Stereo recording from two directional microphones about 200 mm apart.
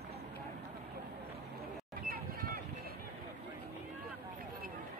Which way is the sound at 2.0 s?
45° right (ahead or behind).